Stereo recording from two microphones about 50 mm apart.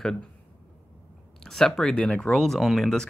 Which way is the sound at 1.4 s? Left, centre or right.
Centre.